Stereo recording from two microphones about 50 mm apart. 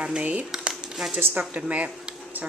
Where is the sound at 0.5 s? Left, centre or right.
Centre.